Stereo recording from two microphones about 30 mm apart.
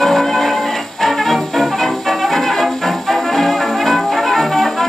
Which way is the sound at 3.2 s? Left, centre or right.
Centre.